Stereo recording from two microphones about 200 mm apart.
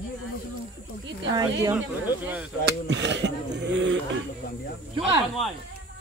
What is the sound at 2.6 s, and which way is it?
Speech, 60° right (ahead or behind).